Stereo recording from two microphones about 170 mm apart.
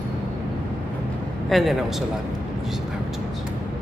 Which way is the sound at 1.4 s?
Centre (ahead or behind).